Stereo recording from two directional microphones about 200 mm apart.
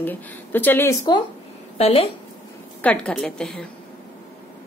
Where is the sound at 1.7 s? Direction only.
30° left (ahead or behind).